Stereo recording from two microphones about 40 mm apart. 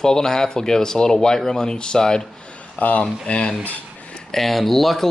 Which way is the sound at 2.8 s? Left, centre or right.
Left.